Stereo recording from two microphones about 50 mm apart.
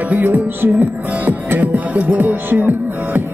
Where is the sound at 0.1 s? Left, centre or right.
Right.